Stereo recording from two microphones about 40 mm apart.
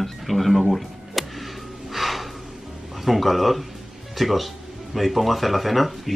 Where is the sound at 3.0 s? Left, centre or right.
Centre.